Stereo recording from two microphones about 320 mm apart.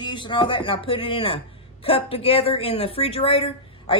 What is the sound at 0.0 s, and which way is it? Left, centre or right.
Speech, centre.